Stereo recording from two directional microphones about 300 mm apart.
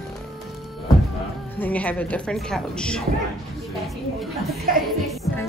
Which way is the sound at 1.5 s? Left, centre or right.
Centre.